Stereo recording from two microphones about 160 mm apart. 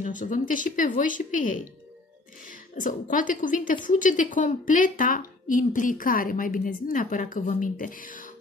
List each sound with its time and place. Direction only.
0.0 s a woman's voice: 55° left (ahead or behind)
2.7 s a woman's voice: 55° left (ahead or behind)